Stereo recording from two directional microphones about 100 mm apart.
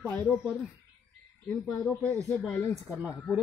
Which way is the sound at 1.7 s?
5° left (ahead or behind).